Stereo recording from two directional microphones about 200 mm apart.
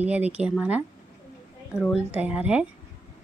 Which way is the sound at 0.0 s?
5° right (ahead or behind).